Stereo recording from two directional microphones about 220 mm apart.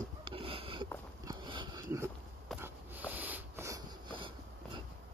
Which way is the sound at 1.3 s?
20° right (ahead or behind).